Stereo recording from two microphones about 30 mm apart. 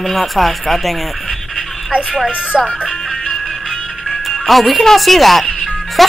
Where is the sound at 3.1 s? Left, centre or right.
Centre.